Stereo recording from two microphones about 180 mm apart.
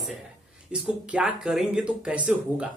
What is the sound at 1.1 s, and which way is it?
Speech, 5° right (ahead or behind).